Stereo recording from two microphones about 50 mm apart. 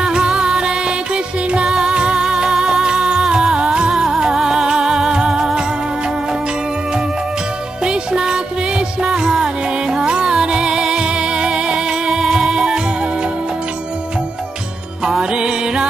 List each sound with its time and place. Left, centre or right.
0.0 s music: centre
7.8 s music: centre
15.0 s music: centre